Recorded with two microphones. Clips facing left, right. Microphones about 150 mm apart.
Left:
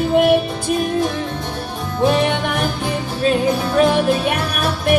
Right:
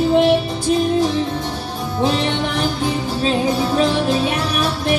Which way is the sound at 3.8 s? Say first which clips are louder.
Left 5 dB; 55° left (ahead or behind).